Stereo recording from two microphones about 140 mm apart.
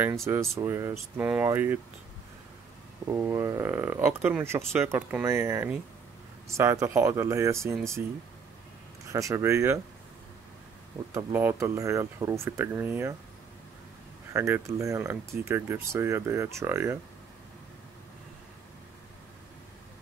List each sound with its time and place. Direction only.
0.0 s speech: 20° right (ahead or behind)
3.1 s speech: 15° right (ahead or behind)
9.1 s speech: 20° right (ahead or behind)
11.1 s speech: 15° right (ahead or behind)
14.3 s speech: 20° right (ahead or behind)